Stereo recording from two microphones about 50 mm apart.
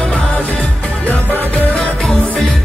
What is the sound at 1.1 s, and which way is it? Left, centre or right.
Music, left.